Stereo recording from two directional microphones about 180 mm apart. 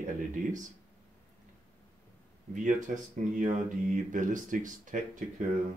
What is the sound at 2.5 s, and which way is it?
Speech, 45° right (ahead or behind).